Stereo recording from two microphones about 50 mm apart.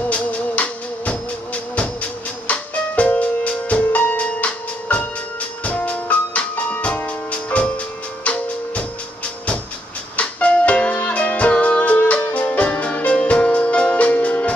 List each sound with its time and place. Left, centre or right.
0.1 s music: left
10.1 s music: left